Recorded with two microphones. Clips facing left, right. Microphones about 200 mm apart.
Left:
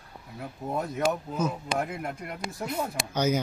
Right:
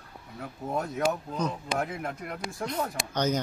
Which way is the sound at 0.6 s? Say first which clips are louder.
Left 1 dB; 15° left (ahead or behind).